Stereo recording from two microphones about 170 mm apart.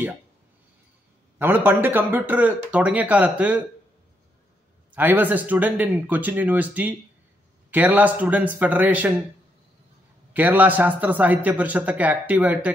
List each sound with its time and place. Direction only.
1.4 s a man's voice: 10° right (ahead or behind)
4.9 s a man's voice: 10° right (ahead or behind)
10.3 s a man's voice: 10° right (ahead or behind)